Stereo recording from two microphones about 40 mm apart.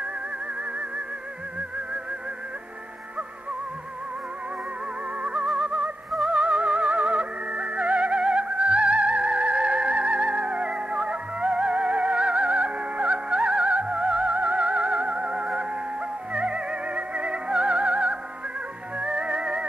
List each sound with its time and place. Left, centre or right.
5.2 s music: right